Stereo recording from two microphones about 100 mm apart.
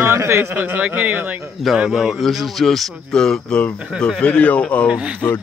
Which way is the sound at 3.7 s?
10° right (ahead or behind).